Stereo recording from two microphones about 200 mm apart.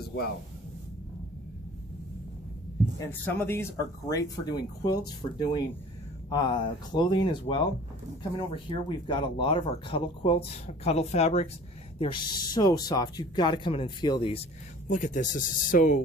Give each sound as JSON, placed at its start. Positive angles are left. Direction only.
{"t": 3.0, "sound": "speech", "side_deg": 10}
{"t": 12.0, "sound": "speech", "side_deg": 25}
{"t": 14.9, "sound": "speech", "side_deg": 40}